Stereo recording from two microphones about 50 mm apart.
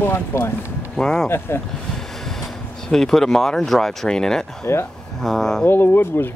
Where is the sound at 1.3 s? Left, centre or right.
Left.